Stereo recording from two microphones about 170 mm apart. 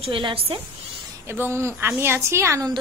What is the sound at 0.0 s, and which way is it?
Speech, 30° right (ahead or behind).